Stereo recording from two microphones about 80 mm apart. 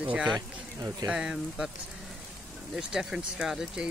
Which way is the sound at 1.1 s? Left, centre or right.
Centre.